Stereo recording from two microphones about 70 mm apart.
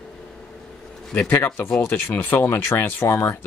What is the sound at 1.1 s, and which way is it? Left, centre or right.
Speech, left.